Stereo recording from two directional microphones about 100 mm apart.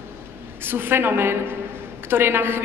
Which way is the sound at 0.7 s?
20° right (ahead or behind).